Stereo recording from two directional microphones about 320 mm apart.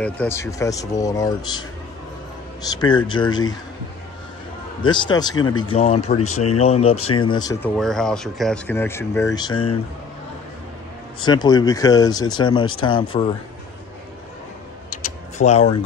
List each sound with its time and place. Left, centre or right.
0.0 s speech: centre
2.6 s speech: centre
4.8 s speech: centre
6.2 s speech: left
6.6 s speech: centre
7.7 s speech: centre
11.2 s speech: centre
15.0 s a sound: left